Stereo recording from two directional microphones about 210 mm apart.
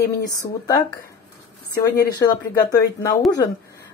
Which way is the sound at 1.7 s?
50° left (ahead or behind).